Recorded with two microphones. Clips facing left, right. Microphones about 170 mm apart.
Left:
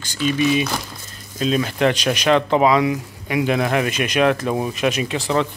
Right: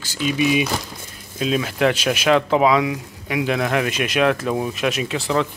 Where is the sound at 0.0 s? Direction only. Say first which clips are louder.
Left 1 dB; 5° right (ahead or behind).